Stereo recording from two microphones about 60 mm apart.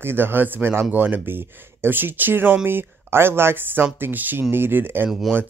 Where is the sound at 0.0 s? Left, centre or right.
Right.